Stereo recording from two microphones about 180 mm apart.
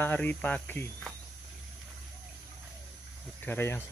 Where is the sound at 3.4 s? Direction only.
10° left (ahead or behind).